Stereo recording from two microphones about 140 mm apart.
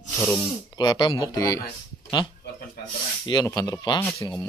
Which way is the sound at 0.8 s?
35° left (ahead or behind).